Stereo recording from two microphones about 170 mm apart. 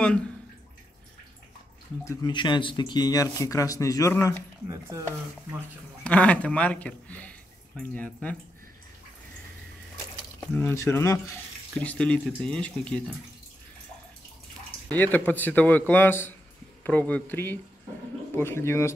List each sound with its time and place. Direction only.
2.0 s speech: 25° left (ahead or behind)
4.6 s speech: 15° right (ahead or behind)
6.0 s speech: 10° left (ahead or behind)
10.5 s speech: 15° left (ahead or behind)
14.9 s speech: 10° left (ahead or behind)